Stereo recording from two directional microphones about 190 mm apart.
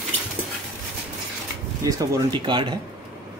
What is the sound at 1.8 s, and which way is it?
Speech, 20° right (ahead or behind).